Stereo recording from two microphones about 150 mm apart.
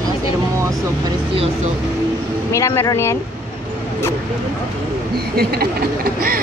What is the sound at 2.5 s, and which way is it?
Speech, 20° left (ahead or behind).